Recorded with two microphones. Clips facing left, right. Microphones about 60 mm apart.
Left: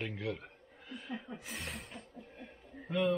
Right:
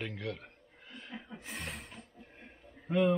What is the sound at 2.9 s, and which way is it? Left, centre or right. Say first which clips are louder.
Speech: right 4 dB; right.